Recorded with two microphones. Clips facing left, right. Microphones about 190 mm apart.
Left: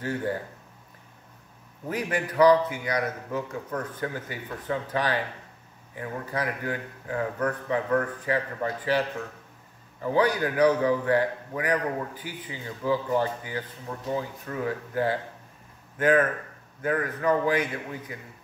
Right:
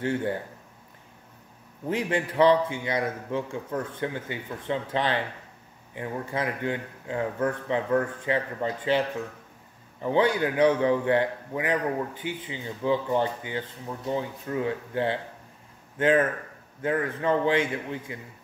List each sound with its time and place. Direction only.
1.9 s a man's voice: 25° right (ahead or behind)
10.1 s a man's voice: 25° right (ahead or behind)